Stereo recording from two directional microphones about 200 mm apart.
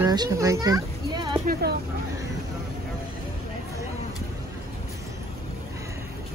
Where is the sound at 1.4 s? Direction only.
50° right (ahead or behind).